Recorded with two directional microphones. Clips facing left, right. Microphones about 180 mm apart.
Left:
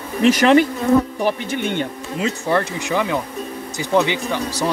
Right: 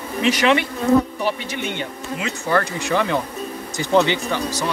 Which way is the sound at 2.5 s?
25° left (ahead or behind).